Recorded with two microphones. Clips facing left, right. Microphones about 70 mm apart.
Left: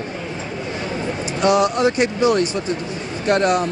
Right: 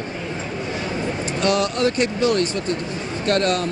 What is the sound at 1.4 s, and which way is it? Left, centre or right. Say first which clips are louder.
Speech: left 4 dB; centre.